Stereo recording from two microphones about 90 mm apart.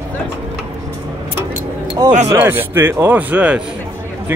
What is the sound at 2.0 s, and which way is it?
Speech, 45° right (ahead or behind).